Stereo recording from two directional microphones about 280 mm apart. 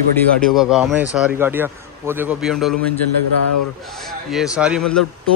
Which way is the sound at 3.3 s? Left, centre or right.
Left.